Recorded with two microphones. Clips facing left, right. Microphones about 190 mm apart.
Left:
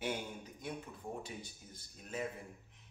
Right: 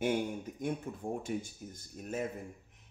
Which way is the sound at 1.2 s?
45° right (ahead or behind).